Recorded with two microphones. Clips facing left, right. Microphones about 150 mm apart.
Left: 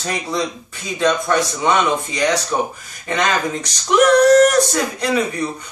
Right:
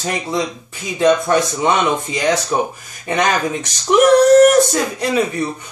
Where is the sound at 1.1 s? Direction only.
20° right (ahead or behind).